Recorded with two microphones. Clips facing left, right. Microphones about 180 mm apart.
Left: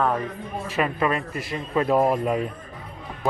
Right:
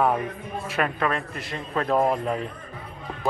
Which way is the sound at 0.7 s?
5° left (ahead or behind).